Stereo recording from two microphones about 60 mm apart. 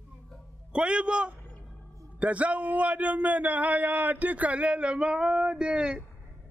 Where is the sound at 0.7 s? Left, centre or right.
Centre.